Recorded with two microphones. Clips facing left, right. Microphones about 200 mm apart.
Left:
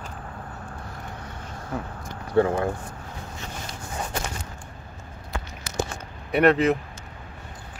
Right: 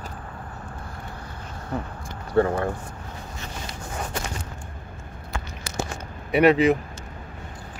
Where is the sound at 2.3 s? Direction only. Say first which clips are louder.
Even; 10° left (ahead or behind).